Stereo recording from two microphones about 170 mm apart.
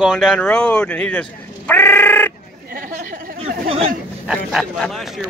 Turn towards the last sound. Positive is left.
turn(degrees=0)  # may be behind; listen again after turning